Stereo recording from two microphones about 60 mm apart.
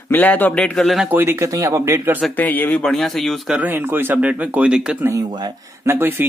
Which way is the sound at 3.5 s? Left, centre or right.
Right.